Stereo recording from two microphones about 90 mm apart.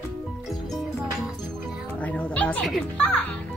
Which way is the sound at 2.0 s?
15° left (ahead or behind).